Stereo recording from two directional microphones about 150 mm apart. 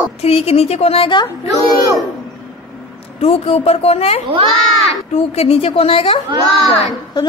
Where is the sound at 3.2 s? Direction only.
40° left (ahead or behind).